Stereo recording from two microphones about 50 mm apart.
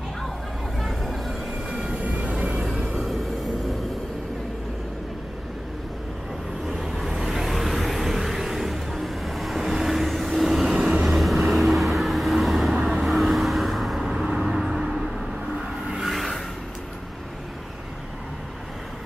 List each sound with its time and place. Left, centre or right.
0.7 s a sound: centre
1.7 s train: right
7.0 s vehicle: centre
11.1 s vehicle: centre
14.0 s vehicle: centre